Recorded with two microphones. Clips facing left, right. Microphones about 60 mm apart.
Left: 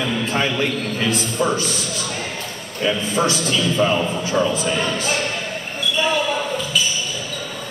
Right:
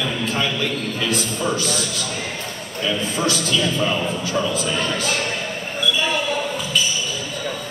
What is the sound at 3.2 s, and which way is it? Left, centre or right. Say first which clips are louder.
A man's voice: right 2 dB; left.